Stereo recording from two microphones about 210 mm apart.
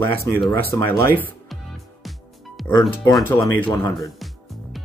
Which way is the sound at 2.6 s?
15° left (ahead or behind).